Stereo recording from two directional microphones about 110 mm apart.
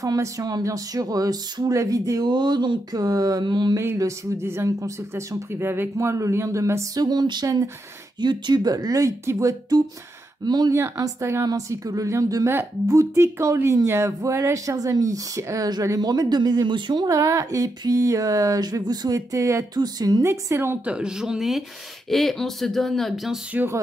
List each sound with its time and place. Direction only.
0.0 s speech: 35° right (ahead or behind)
3.7 s speech: 25° right (ahead or behind); by 17.1 s 45° right (ahead or behind)
17.1 s speech: 30° right (ahead or behind); by 23.4 s centre (ahead or behind)